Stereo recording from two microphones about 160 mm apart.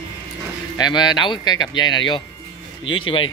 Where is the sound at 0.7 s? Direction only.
25° left (ahead or behind).